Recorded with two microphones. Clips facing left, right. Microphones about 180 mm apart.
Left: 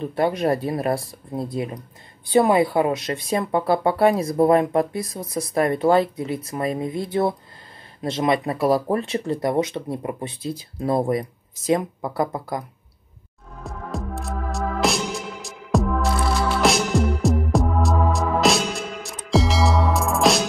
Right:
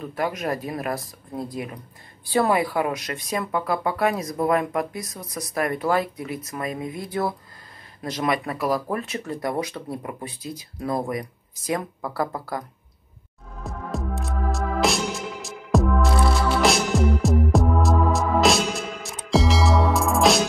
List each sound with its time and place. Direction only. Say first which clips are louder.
0.0 s speech: left 6 dB; 30° left (ahead or behind)
13.7 s music: even; centre (ahead or behind)